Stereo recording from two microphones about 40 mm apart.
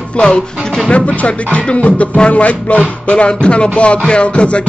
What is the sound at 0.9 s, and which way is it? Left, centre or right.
Speech, left.